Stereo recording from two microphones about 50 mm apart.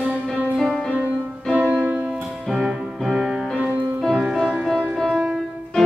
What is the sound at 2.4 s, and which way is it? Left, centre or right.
Music, centre.